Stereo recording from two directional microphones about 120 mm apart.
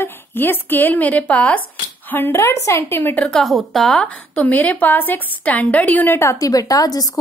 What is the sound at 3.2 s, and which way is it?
A woman's voice, 5° left (ahead or behind).